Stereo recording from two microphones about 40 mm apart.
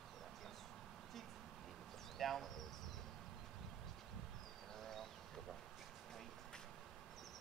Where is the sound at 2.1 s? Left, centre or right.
Centre.